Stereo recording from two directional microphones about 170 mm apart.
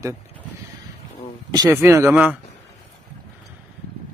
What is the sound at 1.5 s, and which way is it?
Speech, 20° right (ahead or behind).